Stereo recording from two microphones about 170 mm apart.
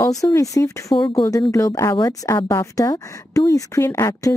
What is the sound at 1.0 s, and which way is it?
A woman's voice, 30° left (ahead or behind).